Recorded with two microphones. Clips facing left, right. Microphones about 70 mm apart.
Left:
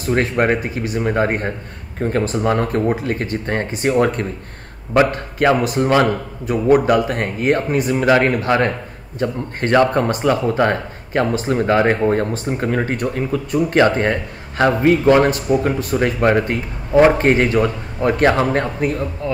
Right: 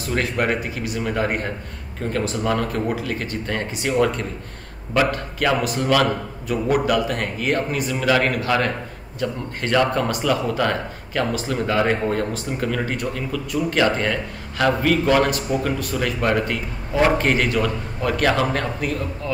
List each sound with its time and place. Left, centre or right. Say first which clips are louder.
0.0 s speech: left 5 dB; left
4.9 s speech: left 5 dB; left